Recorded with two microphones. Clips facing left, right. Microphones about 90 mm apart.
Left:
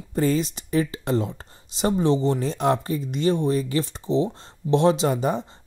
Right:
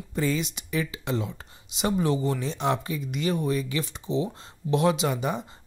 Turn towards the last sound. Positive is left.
turn(degrees=40)  # may be behind; listen again after turning